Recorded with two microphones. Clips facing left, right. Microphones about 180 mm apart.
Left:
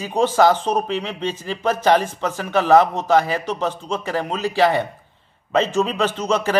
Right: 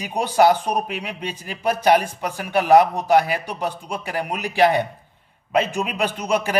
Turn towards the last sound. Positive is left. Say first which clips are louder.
# left 2 dB
turn(degrees=-10)  # may be behind; listen again after turning